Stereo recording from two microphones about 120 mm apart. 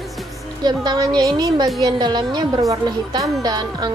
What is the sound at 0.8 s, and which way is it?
Speech, 35° right (ahead or behind).